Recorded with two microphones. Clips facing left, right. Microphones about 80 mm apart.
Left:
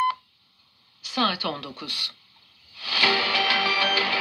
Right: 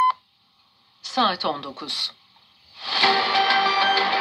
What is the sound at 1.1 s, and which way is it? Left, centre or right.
Speech, centre.